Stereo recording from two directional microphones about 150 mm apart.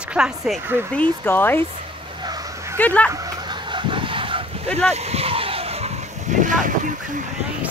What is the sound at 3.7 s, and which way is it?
Fowl, 35° right (ahead or behind).